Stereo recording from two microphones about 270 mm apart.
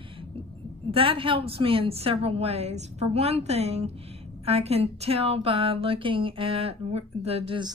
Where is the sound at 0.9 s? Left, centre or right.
Centre.